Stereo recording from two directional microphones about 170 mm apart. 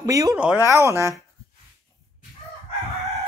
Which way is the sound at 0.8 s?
15° right (ahead or behind).